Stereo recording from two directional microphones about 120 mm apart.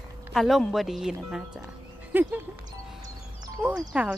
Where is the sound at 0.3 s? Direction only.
Centre (ahead or behind).